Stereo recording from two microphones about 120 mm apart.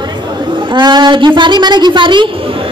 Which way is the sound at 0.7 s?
40° right (ahead or behind).